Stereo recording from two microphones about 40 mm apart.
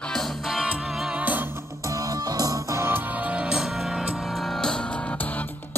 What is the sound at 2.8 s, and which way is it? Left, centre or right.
Music, right.